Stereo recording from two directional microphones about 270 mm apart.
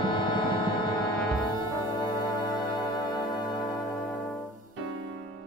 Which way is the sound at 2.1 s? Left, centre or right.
Centre.